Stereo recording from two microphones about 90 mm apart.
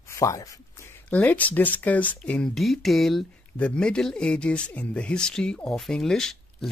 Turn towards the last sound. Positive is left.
turn(degrees=5)  # may be behind; listen again after turning